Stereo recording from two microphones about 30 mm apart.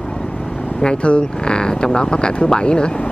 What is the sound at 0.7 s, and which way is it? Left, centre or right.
Speech, left.